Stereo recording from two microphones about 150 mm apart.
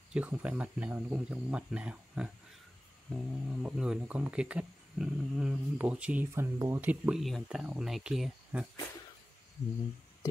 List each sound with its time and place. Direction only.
0.1 s speech: 10° right (ahead or behind)